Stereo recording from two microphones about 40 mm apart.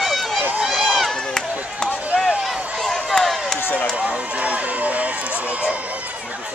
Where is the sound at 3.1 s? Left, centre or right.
Left.